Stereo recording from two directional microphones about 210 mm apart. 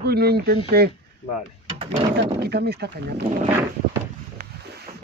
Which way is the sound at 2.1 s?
50° right (ahead or behind).